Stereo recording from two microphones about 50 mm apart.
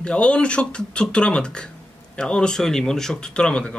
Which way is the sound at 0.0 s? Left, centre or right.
Left.